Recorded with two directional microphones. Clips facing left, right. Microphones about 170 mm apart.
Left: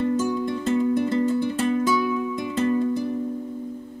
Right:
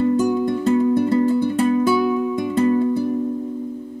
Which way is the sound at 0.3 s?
45° right (ahead or behind).